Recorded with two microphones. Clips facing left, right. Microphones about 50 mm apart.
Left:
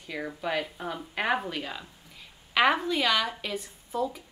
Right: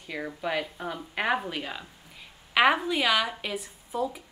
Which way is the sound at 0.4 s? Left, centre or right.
Centre.